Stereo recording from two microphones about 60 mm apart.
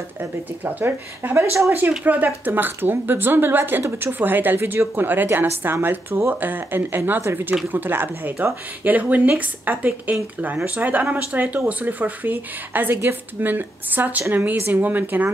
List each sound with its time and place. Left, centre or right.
0.2 s speech: right